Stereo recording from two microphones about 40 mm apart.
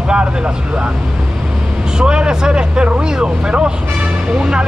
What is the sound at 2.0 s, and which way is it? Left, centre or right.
Speech, right.